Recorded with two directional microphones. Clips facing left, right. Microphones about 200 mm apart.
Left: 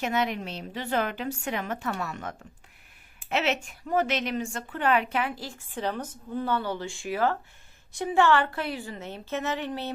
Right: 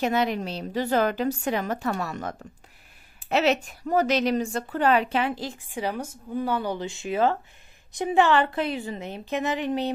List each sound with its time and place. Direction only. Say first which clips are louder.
0.0 s a woman's voice: right 4 dB; 35° right (ahead or behind); by 9.9 s 15° right (ahead or behind)